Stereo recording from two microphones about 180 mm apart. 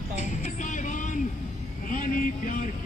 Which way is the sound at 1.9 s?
50° left (ahead or behind).